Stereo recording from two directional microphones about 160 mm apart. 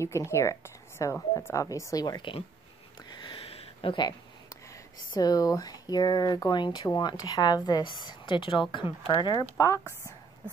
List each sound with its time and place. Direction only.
0.0 s speech: 15° left (ahead or behind)
3.2 s a sound: 30° left (ahead or behind)
5.1 s speech: 25° left (ahead or behind)